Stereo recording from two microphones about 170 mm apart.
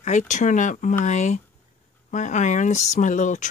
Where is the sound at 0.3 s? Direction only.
45° left (ahead or behind).